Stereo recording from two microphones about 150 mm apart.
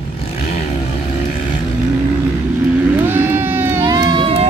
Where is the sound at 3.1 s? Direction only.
15° right (ahead or behind).